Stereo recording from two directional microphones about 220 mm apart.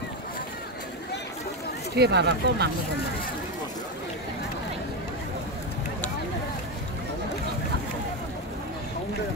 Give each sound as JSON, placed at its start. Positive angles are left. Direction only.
{"t": 2.0, "sound": "speech", "side_deg": -50}